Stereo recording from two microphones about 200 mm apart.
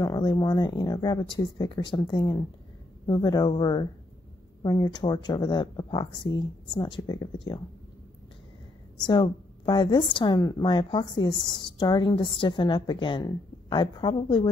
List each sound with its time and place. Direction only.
0.0 s speech: 20° left (ahead or behind)
9.0 s speech: 20° left (ahead or behind)